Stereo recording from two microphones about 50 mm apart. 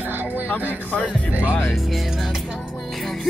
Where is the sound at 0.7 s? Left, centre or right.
Left.